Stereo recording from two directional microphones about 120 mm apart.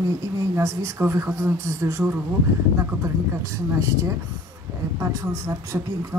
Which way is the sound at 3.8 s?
25° right (ahead or behind).